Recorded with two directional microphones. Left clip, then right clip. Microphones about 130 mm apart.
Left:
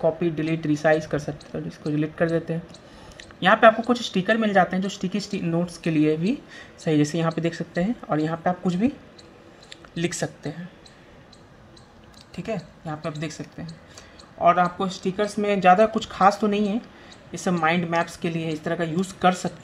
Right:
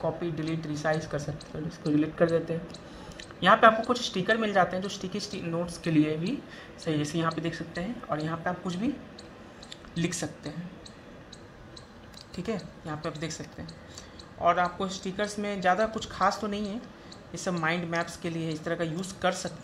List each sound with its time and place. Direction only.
0.0 s speech: 15° left (ahead or behind)
9.9 s speech: 20° left (ahead or behind)
12.4 s speech: 15° left (ahead or behind)